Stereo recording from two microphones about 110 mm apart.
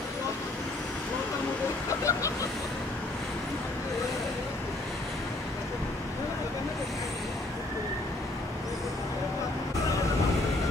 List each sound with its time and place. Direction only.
1.9 s vehicle: 30° left (ahead or behind)